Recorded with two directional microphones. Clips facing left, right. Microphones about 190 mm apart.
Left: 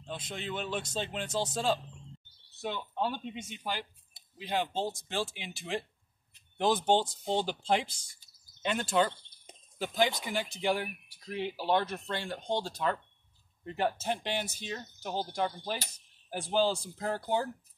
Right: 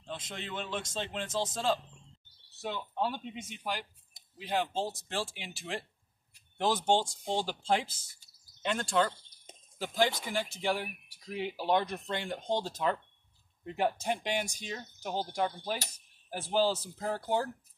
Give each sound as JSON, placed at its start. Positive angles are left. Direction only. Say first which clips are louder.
{"t": 0.0, "sound": "a man's voice", "louder": "left 2 dB", "side_deg": 0}
{"t": 8.6, "sound": "speech", "louder": "left 1 dB", "side_deg": 5}
{"t": 12.4, "sound": "speech", "louder": "even", "side_deg": 0}
{"t": 15.6, "sound": "a sound", "louder": "right 1 dB", "side_deg": -5}
{"t": 16.8, "sound": "speech", "louder": "left 1 dB", "side_deg": 0}